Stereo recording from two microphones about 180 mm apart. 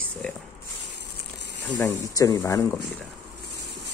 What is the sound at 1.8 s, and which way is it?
Speech, 20° left (ahead or behind).